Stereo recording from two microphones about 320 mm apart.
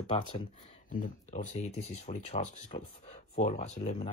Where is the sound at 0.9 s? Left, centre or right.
Left.